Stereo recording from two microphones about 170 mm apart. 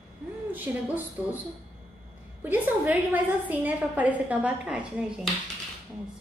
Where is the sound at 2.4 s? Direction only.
10° right (ahead or behind).